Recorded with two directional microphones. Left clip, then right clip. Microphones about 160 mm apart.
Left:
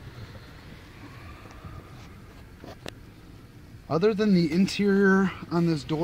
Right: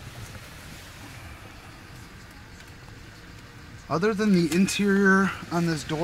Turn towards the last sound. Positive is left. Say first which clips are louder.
# even
turn(degrees=30)  # may be behind; listen again after turning